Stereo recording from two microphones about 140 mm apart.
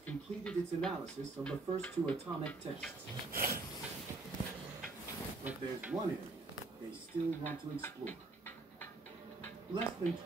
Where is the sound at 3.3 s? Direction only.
90° right.